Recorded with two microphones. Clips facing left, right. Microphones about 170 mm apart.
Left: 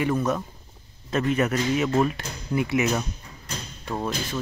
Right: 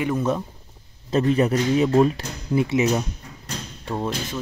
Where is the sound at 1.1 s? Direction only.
30° right (ahead or behind).